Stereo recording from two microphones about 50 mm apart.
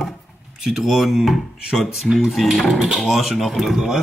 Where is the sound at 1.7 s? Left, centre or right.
Centre.